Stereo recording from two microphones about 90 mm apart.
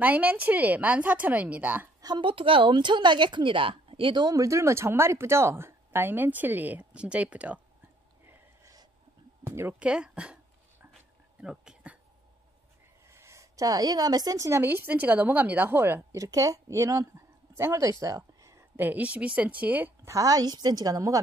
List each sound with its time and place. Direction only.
0.0 s a woman's voice: 20° right (ahead or behind)
2.0 s a woman's voice: 50° right (ahead or behind)
4.3 s speech: 35° right (ahead or behind); by 7.6 s 15° right (ahead or behind)
9.5 s speech: 25° right (ahead or behind)
9.8 s a woman's voice: 10° right (ahead or behind)
11.4 s a sound: 10° right (ahead or behind)
13.1 s speech: 30° right (ahead or behind)
14.6 s speech: 25° right (ahead or behind)
16.3 s speech: 40° right (ahead or behind)
18.8 s a woman's voice: 20° right (ahead or behind)
20.1 s a woman's voice: 40° right (ahead or behind)